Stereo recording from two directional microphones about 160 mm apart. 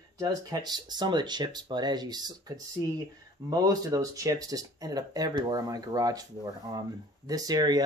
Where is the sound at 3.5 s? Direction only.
25° right (ahead or behind).